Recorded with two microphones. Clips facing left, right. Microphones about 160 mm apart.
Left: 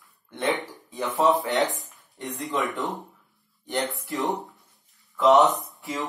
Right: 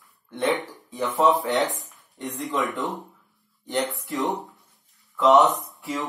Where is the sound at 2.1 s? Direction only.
20° right (ahead or behind).